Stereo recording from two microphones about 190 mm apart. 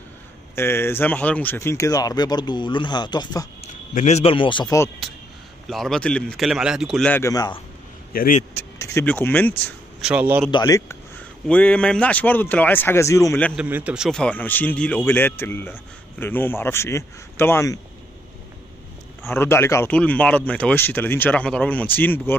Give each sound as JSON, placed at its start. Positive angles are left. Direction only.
{"t": 0.6, "sound": "speech", "side_deg": 15}
{"t": 3.9, "sound": "speech", "side_deg": 35}
{"t": 5.7, "sound": "speech", "side_deg": 0}
{"t": 8.1, "sound": "a man's voice", "side_deg": 50}
{"t": 8.5, "sound": "speech", "side_deg": 15}
{"t": 10.0, "sound": "a man's voice", "side_deg": -10}
{"t": 10.5, "sound": "speech", "side_deg": 20}
{"t": 11.4, "sound": "speech", "side_deg": 5}
{"t": 13.6, "sound": "speech", "side_deg": -10}
{"t": 19.2, "sound": "speech", "side_deg": 10}